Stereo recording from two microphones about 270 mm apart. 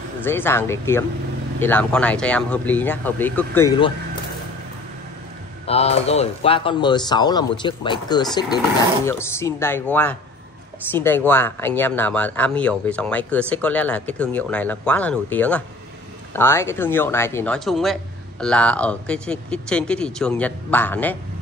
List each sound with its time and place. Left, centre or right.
0.2 s speech: centre
5.7 s speech: left; by 21.2 s centre